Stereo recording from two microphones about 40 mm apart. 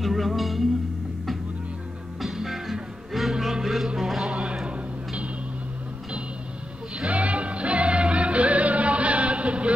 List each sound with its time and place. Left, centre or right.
0.0 s music: centre
2.2 s music: centre
4.3 s music: right
7.1 s music: right